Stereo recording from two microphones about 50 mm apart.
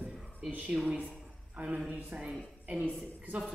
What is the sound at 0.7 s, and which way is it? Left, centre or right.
Speech, centre.